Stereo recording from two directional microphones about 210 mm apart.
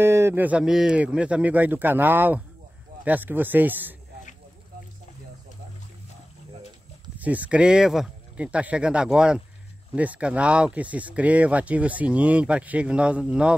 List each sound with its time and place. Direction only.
0.0 s speech: 10° right (ahead or behind)
7.2 s a man's voice: 5° right (ahead or behind)